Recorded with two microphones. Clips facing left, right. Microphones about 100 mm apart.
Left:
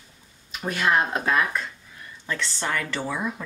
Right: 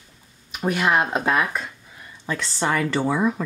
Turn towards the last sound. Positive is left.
turn(degrees=-35)  # may be behind; listen again after turning